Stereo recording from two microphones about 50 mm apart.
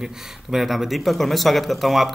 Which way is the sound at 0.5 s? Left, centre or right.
Centre.